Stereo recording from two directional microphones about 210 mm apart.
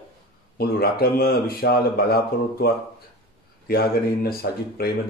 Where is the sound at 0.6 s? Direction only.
45° left (ahead or behind).